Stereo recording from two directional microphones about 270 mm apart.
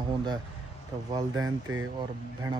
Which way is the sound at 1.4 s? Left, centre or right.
Right.